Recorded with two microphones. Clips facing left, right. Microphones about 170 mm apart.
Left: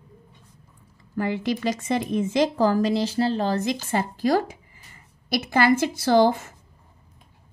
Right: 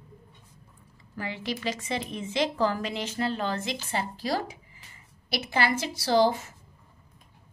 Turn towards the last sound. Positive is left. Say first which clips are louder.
# left 4 dB
turn(degrees=50)  # may be behind; listen again after turning